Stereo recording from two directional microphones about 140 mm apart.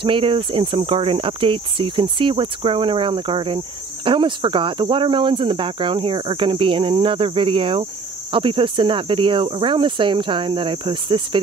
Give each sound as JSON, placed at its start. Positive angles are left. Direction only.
{"t": 0.0, "sound": "speech", "side_deg": -40}